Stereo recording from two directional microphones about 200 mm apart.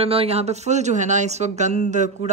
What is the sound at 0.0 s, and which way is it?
Speech, 30° right (ahead or behind).